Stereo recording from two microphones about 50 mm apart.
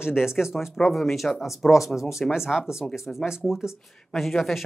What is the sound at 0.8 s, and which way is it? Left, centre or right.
Speech, centre.